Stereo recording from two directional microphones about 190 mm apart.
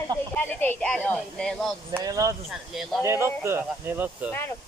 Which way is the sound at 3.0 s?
15° right (ahead or behind).